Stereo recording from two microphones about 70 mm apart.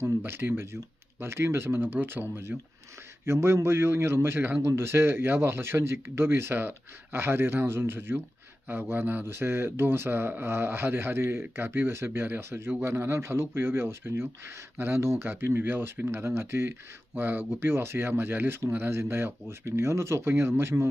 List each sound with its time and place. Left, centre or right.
0.0 s speech: right